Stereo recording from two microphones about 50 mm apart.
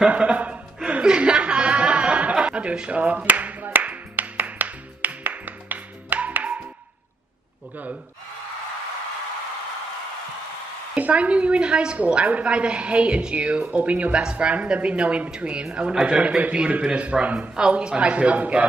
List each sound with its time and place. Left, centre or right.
0.1 s chuckle: right
3.0 s speech: right
3.3 s music: right
11.0 s speech: right